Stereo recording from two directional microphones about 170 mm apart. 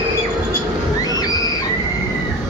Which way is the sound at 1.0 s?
20° left (ahead or behind).